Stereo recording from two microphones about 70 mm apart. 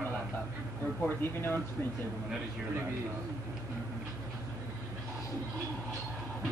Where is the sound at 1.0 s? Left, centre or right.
Left.